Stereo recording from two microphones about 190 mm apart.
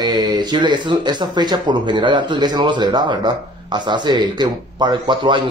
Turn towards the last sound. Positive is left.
turn(degrees=-25)  # may be behind; listen again after turning